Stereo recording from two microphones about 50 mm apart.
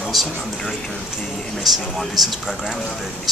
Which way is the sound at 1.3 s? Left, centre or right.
Centre.